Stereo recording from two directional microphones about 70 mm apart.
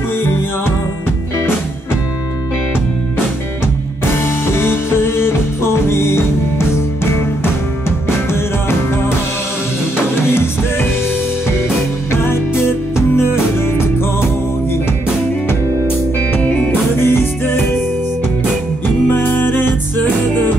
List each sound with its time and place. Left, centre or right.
0.2 s music: left
4.2 s music: left
8.3 s music: left
10.2 s music: left
12.1 s music: left
16.3 s music: centre
16.9 s music: left
19.0 s music: left